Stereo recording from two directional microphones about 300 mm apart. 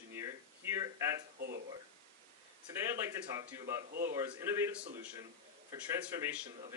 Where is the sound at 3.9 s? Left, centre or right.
Right.